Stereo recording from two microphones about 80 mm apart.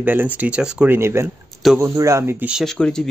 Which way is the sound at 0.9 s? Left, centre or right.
Right.